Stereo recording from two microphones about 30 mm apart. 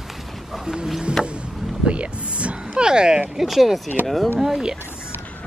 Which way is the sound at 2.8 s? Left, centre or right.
Right.